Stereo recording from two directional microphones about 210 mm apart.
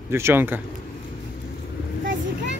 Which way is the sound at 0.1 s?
10° right (ahead or behind).